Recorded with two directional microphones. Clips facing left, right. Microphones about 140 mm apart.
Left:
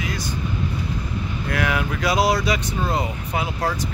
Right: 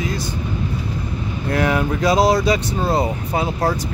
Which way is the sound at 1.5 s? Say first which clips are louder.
Right 6 dB; 30° right (ahead or behind).